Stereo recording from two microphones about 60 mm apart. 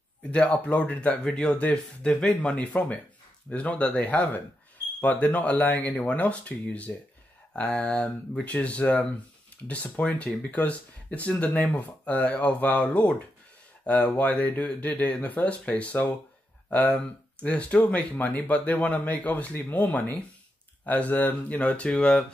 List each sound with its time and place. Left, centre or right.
0.3 s speech: left